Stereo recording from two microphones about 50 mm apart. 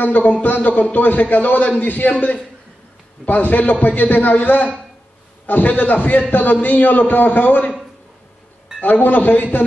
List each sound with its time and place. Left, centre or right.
0.0 s a man's voice: left
8.8 s a man's voice: left